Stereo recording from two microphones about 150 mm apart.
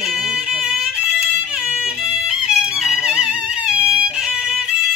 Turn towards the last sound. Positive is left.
turn(degrees=-5)  # may be behind; listen again after turning